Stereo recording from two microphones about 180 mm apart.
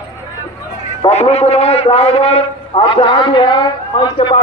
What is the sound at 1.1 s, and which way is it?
A man's voice, 35° left (ahead or behind).